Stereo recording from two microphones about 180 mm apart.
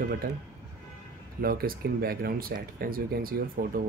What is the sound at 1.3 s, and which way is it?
Speech, 55° right (ahead or behind).